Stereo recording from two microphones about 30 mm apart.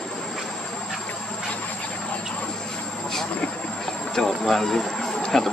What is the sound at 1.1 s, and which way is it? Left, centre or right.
Vehicle, left.